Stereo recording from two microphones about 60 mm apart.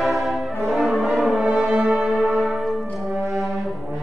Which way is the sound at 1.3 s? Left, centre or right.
Centre.